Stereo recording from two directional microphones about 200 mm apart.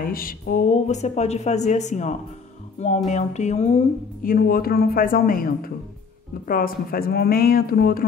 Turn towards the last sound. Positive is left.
turn(degrees=50)  # may be behind; listen again after turning